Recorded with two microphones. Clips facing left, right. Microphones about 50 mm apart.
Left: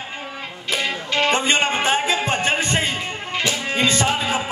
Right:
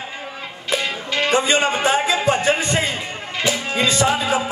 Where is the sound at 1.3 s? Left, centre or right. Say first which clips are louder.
Right 4 dB; left.